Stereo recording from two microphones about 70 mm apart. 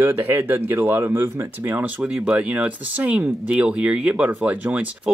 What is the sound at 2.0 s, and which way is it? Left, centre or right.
Speech, centre.